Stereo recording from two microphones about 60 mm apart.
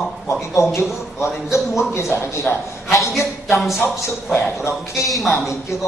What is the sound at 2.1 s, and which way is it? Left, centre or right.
Speech, left.